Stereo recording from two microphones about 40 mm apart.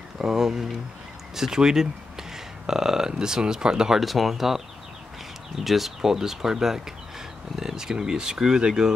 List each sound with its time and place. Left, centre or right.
0.2 s speech: centre
4.0 s speech: centre
5.6 s speech: centre